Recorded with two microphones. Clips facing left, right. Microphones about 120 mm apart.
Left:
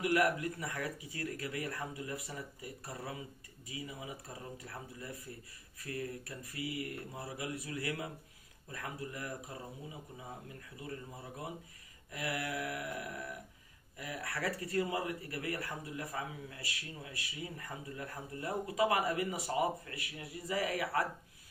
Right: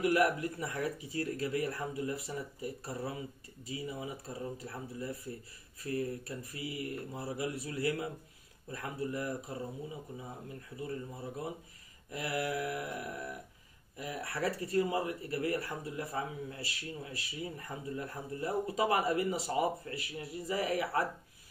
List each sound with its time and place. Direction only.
0.0 s speech: 25° right (ahead or behind)
12.1 s speech: 25° right (ahead or behind)